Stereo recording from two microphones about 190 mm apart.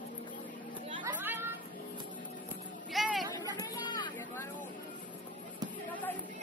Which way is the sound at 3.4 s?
20° left (ahead or behind).